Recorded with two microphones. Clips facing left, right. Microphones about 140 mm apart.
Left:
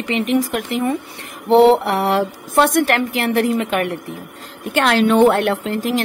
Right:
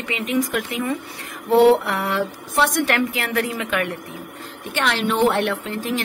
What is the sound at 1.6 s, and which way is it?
Mantra, 30° left (ahead or behind).